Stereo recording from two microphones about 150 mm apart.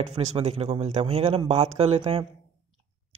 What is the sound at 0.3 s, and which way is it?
Speech, 45° right (ahead or behind).